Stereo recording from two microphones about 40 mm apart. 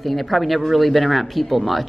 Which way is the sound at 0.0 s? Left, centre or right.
Centre.